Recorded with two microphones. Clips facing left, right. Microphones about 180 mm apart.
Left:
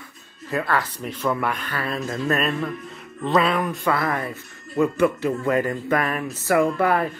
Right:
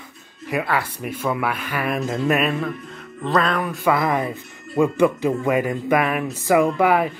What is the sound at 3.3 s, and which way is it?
Speech, 5° left (ahead or behind).